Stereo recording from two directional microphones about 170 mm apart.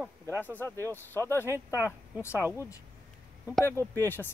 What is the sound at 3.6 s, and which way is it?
Speech, 15° left (ahead or behind).